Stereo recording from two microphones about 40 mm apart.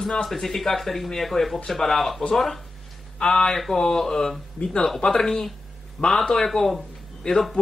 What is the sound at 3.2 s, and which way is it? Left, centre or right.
Speech, centre.